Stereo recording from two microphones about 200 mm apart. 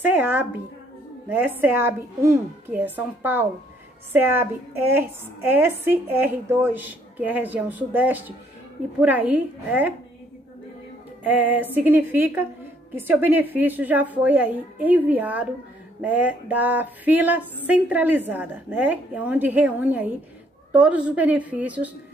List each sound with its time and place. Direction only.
0.0 s a woman's voice: 10° right (ahead or behind)
11.2 s a woman's voice: 10° right (ahead or behind)